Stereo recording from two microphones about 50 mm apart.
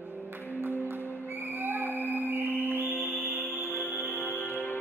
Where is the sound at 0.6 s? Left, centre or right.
Right.